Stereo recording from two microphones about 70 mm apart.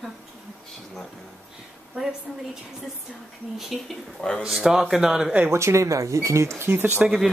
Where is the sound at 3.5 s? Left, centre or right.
Centre.